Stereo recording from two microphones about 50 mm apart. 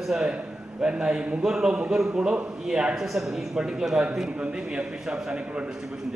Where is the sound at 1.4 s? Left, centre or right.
Centre.